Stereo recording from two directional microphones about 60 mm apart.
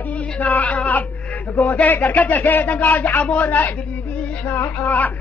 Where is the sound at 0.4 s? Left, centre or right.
Left.